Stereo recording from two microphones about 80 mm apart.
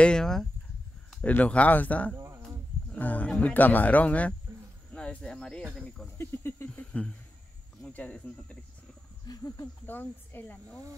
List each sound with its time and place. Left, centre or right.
0.0 s speech: centre
1.2 s speech: centre
2.1 s cricket: right
2.9 s speech: centre
6.1 s cricket: left
6.7 s a sound: centre
7.8 s speech: centre
9.2 s cricket: left
9.8 s speech: left